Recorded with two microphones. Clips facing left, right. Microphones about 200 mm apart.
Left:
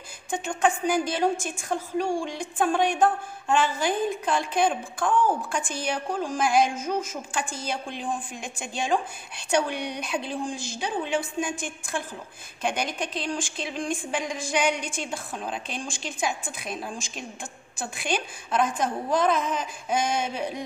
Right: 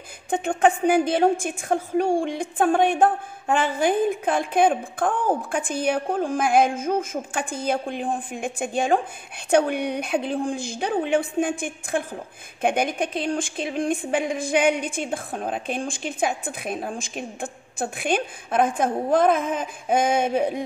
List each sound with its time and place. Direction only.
0.3 s a woman's voice: 60° right (ahead or behind)